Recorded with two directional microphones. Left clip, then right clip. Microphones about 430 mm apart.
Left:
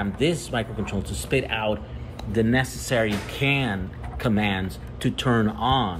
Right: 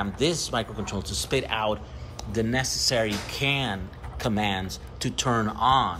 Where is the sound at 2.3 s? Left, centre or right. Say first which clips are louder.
Left 3 dB; centre.